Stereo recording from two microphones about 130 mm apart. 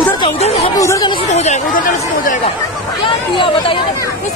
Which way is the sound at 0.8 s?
25° left (ahead or behind).